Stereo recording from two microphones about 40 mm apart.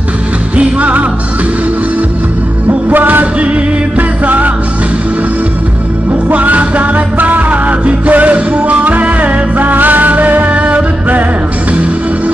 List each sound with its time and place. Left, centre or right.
0.6 s music: right
2.9 s music: right
6.3 s music: right